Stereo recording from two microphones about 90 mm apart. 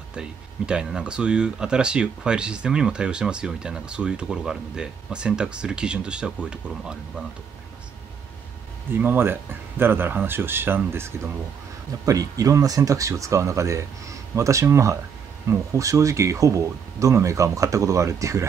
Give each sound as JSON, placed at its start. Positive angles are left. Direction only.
{"t": 0.1, "sound": "speech", "side_deg": -10}
{"t": 8.9, "sound": "speech", "side_deg": -20}
{"t": 12.1, "sound": "speech", "side_deg": -40}